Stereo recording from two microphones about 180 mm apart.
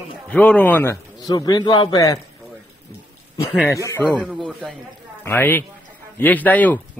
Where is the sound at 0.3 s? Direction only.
5° left (ahead or behind).